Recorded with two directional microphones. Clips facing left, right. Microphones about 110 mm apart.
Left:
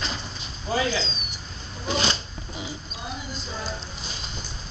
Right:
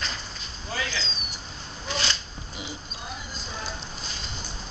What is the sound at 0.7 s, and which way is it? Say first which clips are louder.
Speech: left 7 dB; 20° left (ahead or behind).